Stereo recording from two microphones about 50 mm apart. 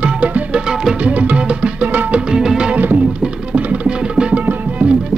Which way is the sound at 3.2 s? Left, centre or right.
Right.